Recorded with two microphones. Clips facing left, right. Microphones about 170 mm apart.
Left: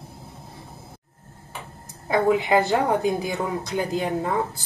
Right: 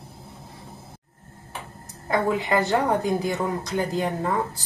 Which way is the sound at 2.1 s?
15° left (ahead or behind).